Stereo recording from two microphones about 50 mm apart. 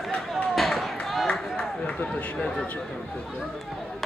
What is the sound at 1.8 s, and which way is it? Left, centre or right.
Run, left.